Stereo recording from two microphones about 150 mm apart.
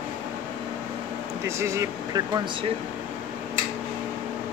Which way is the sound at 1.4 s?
20° right (ahead or behind).